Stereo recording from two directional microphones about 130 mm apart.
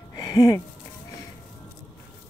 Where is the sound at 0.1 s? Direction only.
30° left (ahead or behind).